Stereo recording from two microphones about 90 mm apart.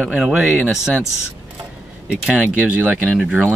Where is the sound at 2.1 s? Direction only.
10° right (ahead or behind).